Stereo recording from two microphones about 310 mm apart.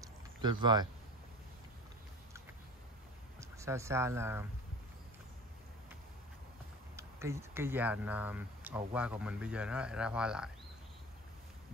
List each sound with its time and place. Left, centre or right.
0.4 s speech: centre
3.3 s speech: centre
7.0 s speech: centre